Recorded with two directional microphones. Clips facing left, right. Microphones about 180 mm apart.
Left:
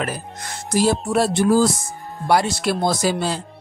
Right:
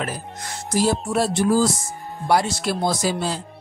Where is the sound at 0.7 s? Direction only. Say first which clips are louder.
Left 2 dB; 70° left (ahead or behind).